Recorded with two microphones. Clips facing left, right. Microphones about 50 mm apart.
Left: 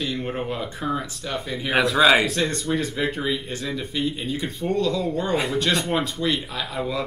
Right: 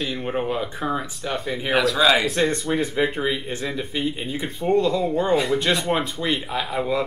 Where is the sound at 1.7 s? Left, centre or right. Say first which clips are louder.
Left 1 dB; centre.